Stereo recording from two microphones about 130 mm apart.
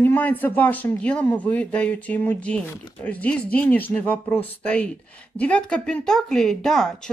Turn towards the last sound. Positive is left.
turn(degrees=5)  # may be behind; listen again after turning